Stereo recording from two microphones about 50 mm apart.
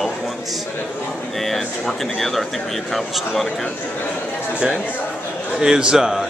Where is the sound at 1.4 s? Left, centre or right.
Centre.